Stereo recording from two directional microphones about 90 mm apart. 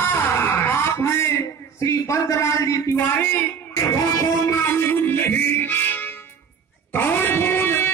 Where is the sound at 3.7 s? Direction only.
40° left (ahead or behind).